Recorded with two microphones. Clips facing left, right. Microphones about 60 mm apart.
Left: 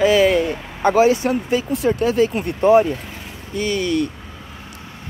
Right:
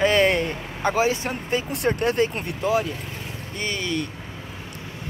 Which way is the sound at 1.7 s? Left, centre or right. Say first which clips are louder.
Left 4 dB; right.